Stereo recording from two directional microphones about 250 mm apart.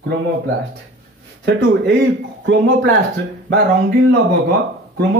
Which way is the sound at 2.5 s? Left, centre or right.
Right.